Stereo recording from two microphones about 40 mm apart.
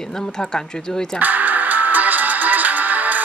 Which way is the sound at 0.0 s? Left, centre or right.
Centre.